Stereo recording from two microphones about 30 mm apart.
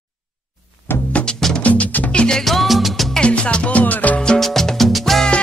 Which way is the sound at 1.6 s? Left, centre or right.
Left.